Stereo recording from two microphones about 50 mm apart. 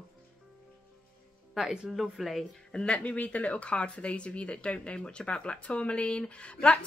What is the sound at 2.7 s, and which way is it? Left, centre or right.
Speech, left.